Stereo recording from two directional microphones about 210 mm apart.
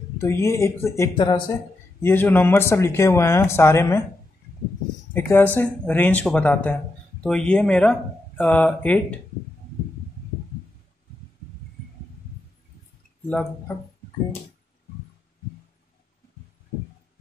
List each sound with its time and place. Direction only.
0.2 s speech: 15° left (ahead or behind)
2.0 s speech: 10° left (ahead or behind)
5.1 s speech: 10° left (ahead or behind)
13.3 s speech: 10° left (ahead or behind)